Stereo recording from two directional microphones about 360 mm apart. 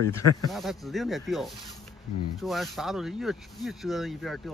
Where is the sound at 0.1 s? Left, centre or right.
Centre.